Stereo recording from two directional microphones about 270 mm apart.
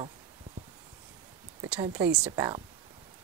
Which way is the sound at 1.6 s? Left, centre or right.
Centre.